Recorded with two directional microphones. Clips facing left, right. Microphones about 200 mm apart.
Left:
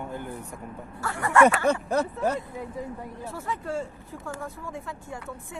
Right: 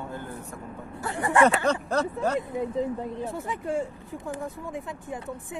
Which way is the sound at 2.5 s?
20° right (ahead or behind).